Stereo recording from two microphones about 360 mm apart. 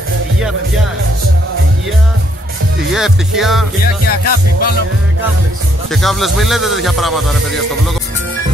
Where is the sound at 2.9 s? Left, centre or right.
Centre.